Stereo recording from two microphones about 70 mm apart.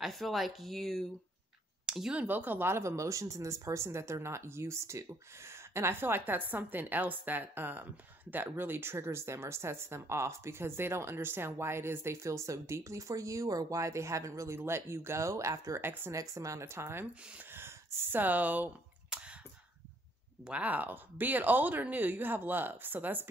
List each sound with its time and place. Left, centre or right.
0.0 s speech: centre
1.9 s speech: centre
2.1 s speech: right
13.7 s speech: right
14.6 s speech: right
15.8 s speech: right
16.1 s speech: right
17.6 s a sound: right
20.4 s speech: right